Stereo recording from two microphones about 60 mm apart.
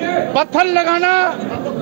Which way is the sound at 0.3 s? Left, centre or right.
Centre.